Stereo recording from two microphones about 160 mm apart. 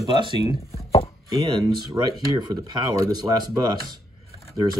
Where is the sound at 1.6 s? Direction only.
25° right (ahead or behind).